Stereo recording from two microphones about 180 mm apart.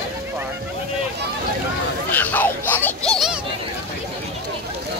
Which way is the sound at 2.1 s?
10° left (ahead or behind).